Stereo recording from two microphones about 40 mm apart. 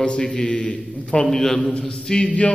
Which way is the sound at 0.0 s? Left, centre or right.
Left.